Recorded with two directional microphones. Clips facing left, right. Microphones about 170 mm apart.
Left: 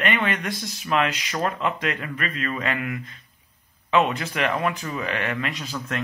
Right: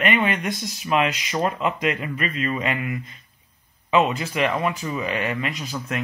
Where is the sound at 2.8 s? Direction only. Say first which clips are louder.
Right 1 dB; centre (ahead or behind).